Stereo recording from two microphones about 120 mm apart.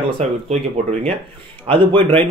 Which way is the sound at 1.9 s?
50° right (ahead or behind).